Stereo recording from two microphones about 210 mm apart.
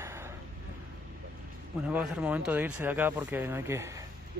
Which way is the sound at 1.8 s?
5° right (ahead or behind).